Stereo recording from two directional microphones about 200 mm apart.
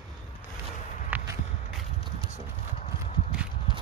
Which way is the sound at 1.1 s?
10° right (ahead or behind).